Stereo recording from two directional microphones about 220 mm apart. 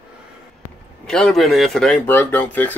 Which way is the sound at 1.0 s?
5° left (ahead or behind).